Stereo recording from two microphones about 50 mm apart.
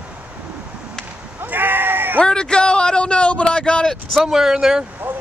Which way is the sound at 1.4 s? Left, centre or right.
Right.